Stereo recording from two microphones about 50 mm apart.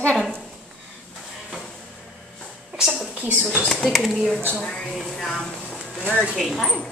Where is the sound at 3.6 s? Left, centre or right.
Centre.